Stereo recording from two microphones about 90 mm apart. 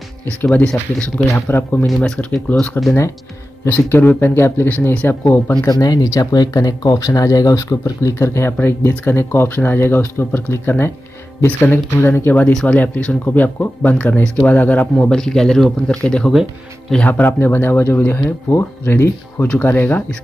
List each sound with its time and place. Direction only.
0.5 s speech: 10° left (ahead or behind)
1.3 s speech: 25° left (ahead or behind)
1.9 s speech: 10° left (ahead or behind)
3.6 s speech: 25° left (ahead or behind)
5.7 s speech: 45° left (ahead or behind); by 20.0 s 20° left (ahead or behind)